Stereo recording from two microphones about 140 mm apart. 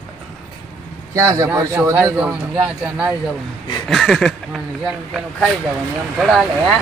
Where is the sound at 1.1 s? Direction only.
20° right (ahead or behind).